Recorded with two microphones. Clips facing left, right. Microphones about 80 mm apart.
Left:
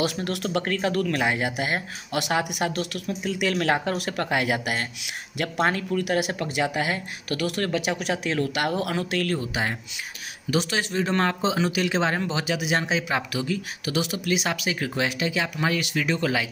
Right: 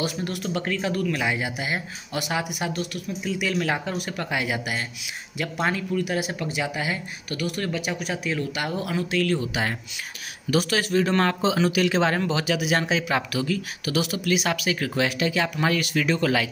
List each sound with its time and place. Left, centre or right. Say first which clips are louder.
0.0 s speech: left 2 dB; left
3.2 s speech: left 1 dB; left
5.9 s speech: left 2 dB; left
6.3 s speech: left 2 dB; left
9.5 s speech: even; left